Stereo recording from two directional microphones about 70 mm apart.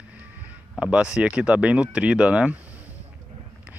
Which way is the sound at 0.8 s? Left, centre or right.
Centre.